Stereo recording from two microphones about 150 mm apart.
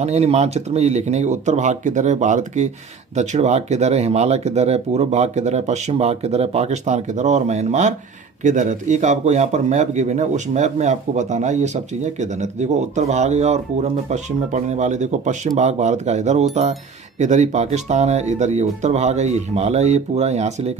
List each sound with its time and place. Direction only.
0.0 s speech: 45° right (ahead or behind)